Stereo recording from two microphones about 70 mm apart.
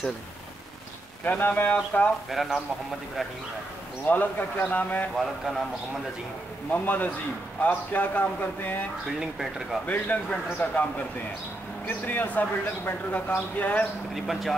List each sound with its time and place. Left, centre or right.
1.2 s speech: left
2.4 s speech: centre
4.1 s speech: left
6.7 s speech: left
9.2 s speech: centre
9.8 s speech: left
14.1 s speech: centre